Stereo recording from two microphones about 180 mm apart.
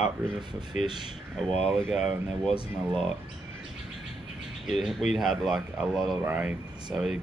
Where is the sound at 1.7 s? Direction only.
Centre (ahead or behind).